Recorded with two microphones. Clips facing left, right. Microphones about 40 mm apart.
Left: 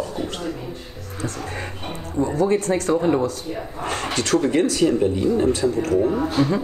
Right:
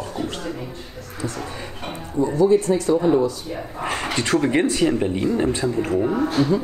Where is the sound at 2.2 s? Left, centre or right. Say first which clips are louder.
Right 3 dB; left.